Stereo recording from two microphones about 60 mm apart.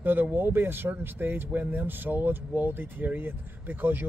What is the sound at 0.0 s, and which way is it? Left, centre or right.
Speech, right.